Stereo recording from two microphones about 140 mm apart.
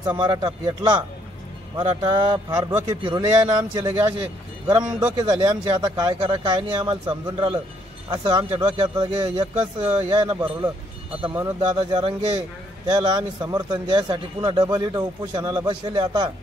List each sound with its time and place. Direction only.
0.2 s a man's voice: 30° right (ahead or behind)
11.7 s a man's voice: 30° right (ahead or behind)